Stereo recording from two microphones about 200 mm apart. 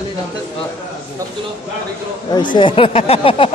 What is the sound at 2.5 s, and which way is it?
Speech, 25° left (ahead or behind).